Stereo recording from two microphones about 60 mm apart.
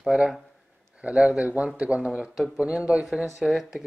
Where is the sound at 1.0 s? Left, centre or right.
Centre.